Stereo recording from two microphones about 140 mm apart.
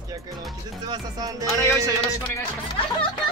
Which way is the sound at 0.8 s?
30° right (ahead or behind).